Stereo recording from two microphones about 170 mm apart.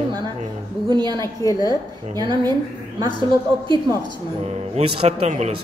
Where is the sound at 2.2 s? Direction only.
25° right (ahead or behind).